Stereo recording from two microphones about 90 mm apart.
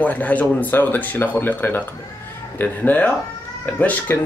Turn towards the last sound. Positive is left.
turn(degrees=15)  # may be behind; listen again after turning